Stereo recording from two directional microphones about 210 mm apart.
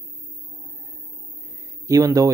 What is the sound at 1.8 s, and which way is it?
Speech, 15° right (ahead or behind).